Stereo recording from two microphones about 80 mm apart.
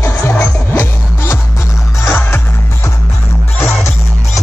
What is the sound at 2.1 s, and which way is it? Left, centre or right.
Music, left.